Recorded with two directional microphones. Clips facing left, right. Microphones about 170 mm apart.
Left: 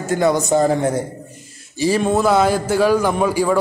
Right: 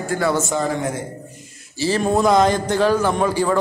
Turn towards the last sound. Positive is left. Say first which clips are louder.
# left 1 dB
turn(degrees=10)  # may be behind; listen again after turning